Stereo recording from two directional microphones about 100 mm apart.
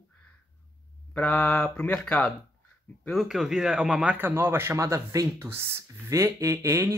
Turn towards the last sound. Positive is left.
turn(degrees=-30)  # may be behind; listen again after turning